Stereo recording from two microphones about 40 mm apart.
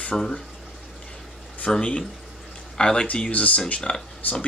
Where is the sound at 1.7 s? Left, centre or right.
Left.